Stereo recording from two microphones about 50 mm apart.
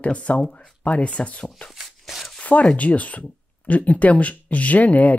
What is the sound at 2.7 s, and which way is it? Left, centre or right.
Speech, left.